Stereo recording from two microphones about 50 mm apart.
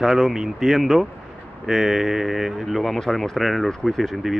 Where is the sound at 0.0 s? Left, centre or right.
Centre.